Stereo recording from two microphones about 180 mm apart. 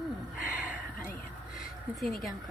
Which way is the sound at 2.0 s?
Centre (ahead or behind).